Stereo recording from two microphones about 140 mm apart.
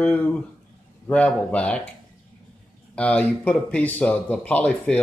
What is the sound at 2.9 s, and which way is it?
Speech, 10° left (ahead or behind).